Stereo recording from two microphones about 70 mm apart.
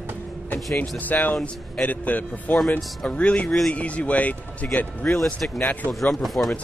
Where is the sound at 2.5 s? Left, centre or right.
Centre.